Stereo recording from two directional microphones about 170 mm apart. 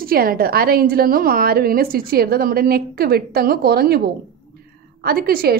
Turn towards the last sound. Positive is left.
turn(degrees=-65)  # may be behind; listen again after turning